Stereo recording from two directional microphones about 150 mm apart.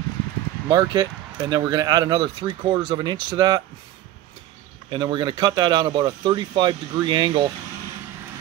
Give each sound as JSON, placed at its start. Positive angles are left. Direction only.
{"t": 0.7, "sound": "speech", "side_deg": -30}
{"t": 4.8, "sound": "speech", "side_deg": -30}